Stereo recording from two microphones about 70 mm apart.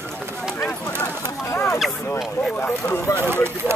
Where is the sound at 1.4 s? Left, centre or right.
Left.